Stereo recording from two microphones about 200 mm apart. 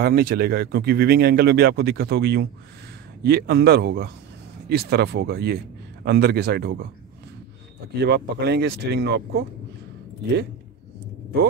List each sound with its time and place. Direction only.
0.0 s speech: 50° right (ahead or behind)
8.0 s speech: 55° right (ahead or behind)